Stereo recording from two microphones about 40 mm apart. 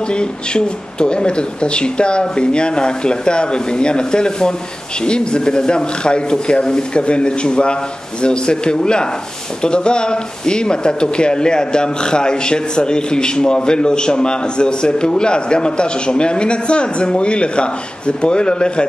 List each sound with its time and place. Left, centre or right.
0.1 s speech: left